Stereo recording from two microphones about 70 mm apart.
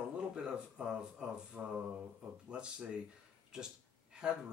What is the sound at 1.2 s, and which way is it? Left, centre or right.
Speech, centre.